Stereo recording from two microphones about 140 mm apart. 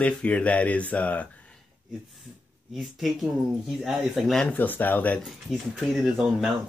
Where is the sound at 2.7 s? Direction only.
Centre (ahead or behind).